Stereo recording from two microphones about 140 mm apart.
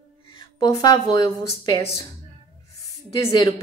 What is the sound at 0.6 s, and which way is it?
Speech, 25° left (ahead or behind).